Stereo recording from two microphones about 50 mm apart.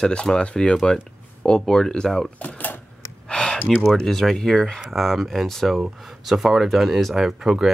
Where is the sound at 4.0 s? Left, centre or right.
Centre.